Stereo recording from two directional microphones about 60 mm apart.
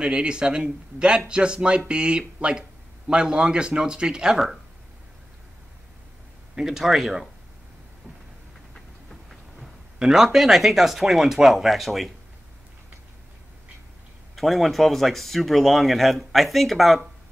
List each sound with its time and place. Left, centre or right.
0.0 s speech: centre
6.5 s speech: centre
8.7 s train: centre
9.9 s speech: centre
14.3 s speech: centre